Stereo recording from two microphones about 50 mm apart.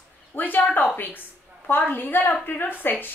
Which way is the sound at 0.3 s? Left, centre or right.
Left.